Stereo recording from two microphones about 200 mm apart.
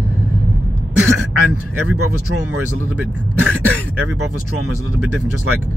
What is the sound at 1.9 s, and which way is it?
Speech, 90° right.